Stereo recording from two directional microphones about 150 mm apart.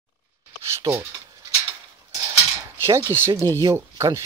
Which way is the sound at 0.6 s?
20° right (ahead or behind).